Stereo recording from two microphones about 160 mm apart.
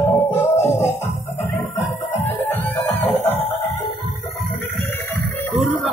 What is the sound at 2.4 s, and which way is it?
Music, 10° left (ahead or behind).